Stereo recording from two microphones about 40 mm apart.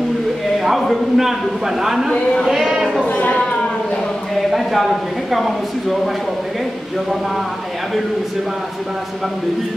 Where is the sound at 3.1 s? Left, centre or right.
Left.